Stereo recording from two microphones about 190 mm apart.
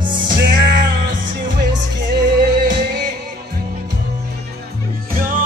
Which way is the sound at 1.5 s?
60° right (ahead or behind).